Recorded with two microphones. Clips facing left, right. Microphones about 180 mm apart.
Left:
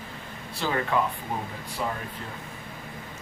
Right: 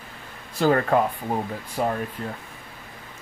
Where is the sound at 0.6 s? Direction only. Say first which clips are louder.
Right 7 dB; 45° right (ahead or behind).